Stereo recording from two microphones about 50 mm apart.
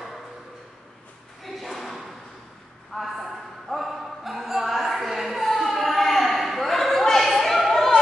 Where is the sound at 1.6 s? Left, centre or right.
Centre.